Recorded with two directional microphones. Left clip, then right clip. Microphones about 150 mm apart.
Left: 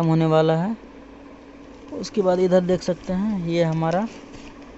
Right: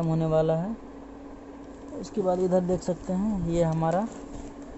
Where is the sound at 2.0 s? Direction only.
15° left (ahead or behind).